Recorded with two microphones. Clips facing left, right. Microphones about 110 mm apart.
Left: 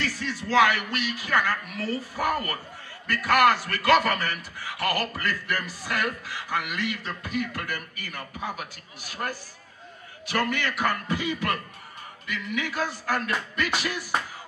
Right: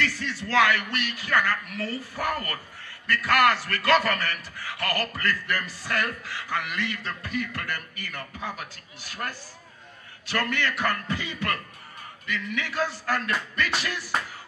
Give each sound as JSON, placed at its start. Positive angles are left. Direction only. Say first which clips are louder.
{"t": 0.2, "sound": "a man's voice", "louder": "left 3 dB", "side_deg": 15}
{"t": 10.2, "sound": "a man's voice", "louder": "left 1 dB", "side_deg": 15}